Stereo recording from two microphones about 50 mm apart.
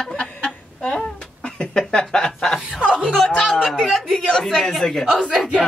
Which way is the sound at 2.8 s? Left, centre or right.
Right.